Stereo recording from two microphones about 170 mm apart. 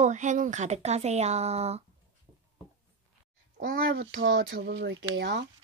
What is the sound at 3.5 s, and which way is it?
Speech, 60° right (ahead or behind).